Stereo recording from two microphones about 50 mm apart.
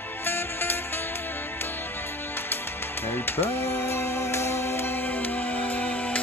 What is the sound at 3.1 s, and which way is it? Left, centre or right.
Music, left.